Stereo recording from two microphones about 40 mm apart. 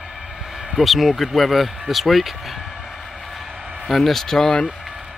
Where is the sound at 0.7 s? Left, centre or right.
Centre.